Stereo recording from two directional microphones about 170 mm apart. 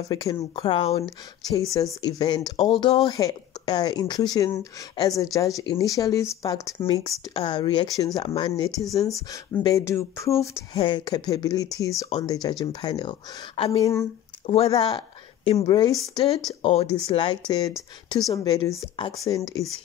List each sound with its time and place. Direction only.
0.1 s speech: 20° left (ahead or behind)
13.6 s speech: 35° left (ahead or behind)
14.7 s a sound: 25° left (ahead or behind)
15.6 s speech: 25° left (ahead or behind)